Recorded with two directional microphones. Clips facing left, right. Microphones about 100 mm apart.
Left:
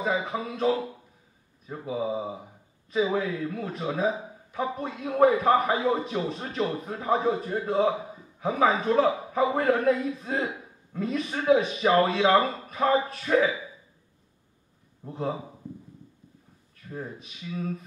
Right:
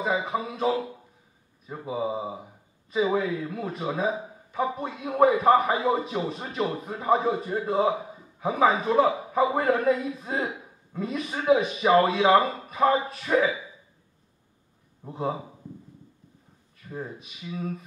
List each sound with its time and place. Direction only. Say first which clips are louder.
0.0 s a man's voice: right 1 dB; 5° right (ahead or behind)
15.0 s a man's voice: right 1 dB; 5° right (ahead or behind)
16.7 s a man's voice: right 1 dB; 5° right (ahead or behind)